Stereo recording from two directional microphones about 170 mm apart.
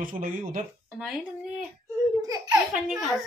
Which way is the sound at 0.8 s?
5° right (ahead or behind).